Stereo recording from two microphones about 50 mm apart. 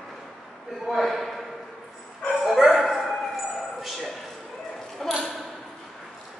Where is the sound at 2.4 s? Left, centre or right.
Centre.